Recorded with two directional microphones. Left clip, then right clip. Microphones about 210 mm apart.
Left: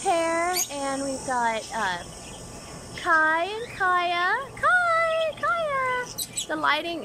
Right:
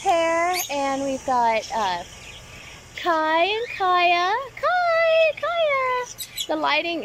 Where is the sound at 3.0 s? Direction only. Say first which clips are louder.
Right 1 dB; 10° right (ahead or behind).